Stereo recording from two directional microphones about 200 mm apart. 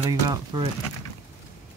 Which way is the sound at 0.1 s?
20° right (ahead or behind).